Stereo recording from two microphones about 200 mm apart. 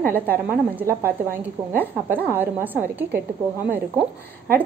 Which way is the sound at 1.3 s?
10° right (ahead or behind).